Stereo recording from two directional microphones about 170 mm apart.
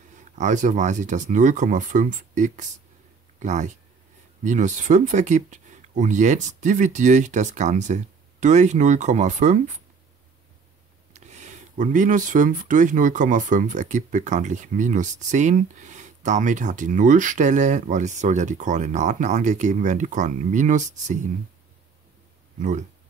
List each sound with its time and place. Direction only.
0.4 s speech: 45° right (ahead or behind)
11.1 s speech: 45° right (ahead or behind)
22.6 s speech: 45° right (ahead or behind)